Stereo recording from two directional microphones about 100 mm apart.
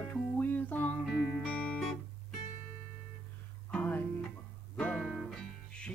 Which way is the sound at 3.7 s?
15° left (ahead or behind).